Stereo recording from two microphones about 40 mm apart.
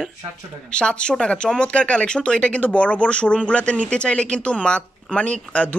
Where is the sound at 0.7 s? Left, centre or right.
Left.